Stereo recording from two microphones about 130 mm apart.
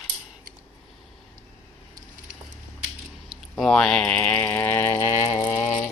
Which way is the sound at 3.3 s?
Centre (ahead or behind).